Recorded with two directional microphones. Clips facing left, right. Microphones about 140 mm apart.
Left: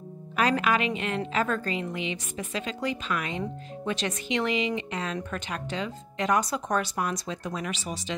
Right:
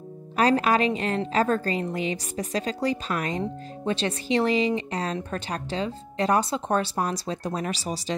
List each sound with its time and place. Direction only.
0.4 s a woman's voice: 35° right (ahead or behind)